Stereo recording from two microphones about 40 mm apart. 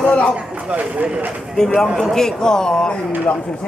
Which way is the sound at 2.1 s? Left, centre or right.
Centre.